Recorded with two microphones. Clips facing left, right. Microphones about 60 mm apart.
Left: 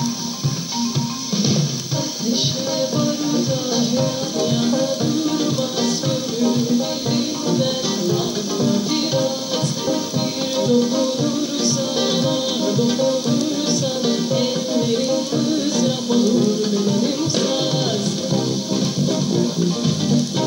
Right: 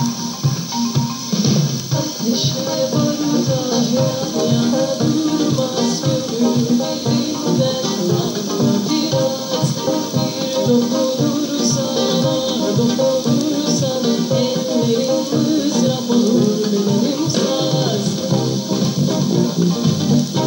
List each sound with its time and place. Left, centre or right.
5.4 s music: right
10.5 s music: right
17.4 s music: right